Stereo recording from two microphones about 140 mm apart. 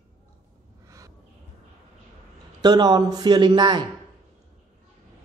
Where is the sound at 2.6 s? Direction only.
30° right (ahead or behind).